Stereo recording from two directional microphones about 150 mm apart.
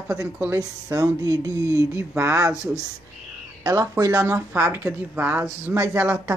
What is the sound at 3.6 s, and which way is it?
Speech, 20° right (ahead or behind).